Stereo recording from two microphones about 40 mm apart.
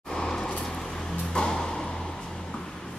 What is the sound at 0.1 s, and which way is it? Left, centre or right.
Vehicle, centre.